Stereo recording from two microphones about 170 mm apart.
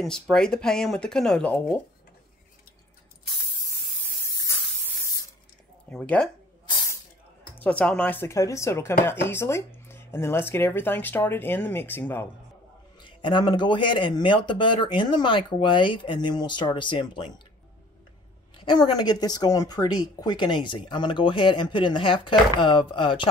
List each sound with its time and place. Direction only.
0.0 s speech: 5° left (ahead or behind)
5.9 s speech: 5° left (ahead or behind)
7.5 s speech: 10° left (ahead or behind)
13.0 s speech: 30° left (ahead or behind)
18.6 s speech: 25° left (ahead or behind)